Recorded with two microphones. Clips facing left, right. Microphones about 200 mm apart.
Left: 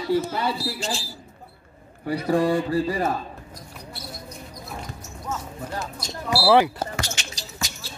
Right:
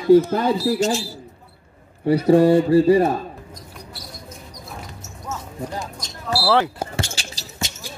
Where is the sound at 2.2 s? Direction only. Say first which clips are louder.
Right 7 dB; 25° right (ahead or behind).